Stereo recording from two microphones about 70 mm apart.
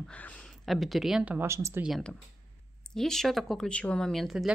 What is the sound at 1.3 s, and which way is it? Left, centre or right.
Speech, right.